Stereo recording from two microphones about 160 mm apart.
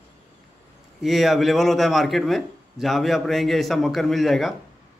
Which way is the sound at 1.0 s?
Centre (ahead or behind).